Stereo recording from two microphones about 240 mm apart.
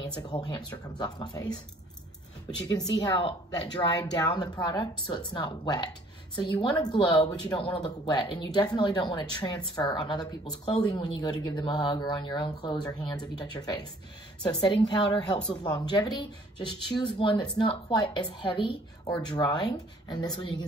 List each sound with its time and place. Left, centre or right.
0.0 s speech: centre
3.0 s speech: centre